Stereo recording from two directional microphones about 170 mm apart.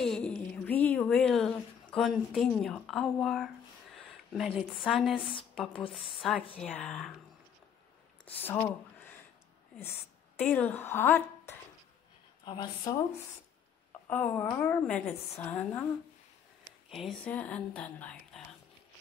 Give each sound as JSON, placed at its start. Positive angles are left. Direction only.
{"t": 0.0, "sound": "a woman's voice", "side_deg": 5}
{"t": 3.9, "sound": "a sound", "side_deg": 0}
{"t": 4.6, "sound": "speech", "side_deg": -5}
{"t": 8.5, "sound": "speech", "side_deg": 10}
{"t": 10.4, "sound": "a woman's voice", "side_deg": 5}
{"t": 12.4, "sound": "a woman's voice", "side_deg": 25}
{"t": 14.0, "sound": "a woman's voice", "side_deg": 10}
{"t": 16.9, "sound": "a woman's voice", "side_deg": 5}